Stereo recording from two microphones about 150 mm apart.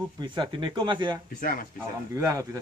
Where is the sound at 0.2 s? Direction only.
30° right (ahead or behind).